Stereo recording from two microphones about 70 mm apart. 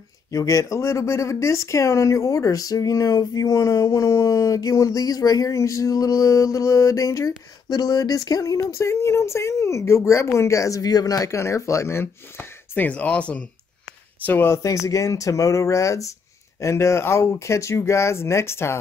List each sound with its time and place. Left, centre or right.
0.3 s speech: left
11.3 s speech: left; by 13.5 s centre
14.2 s speech: left
14.5 s speech: left